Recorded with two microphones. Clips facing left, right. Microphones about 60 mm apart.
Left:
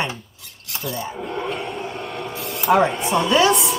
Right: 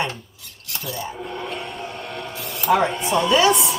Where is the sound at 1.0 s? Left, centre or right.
Centre.